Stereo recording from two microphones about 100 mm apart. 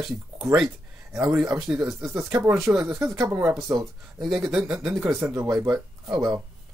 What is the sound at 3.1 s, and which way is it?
Speech, 30° right (ahead or behind).